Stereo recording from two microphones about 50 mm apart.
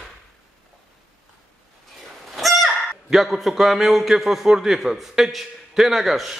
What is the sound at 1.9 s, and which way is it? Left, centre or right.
Speech, centre.